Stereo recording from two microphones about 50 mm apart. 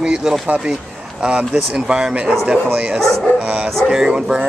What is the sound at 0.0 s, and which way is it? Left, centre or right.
Speech, centre.